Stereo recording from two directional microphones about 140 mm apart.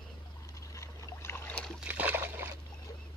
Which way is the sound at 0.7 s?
20° left (ahead or behind).